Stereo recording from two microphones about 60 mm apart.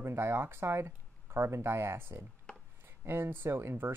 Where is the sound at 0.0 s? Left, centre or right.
Right.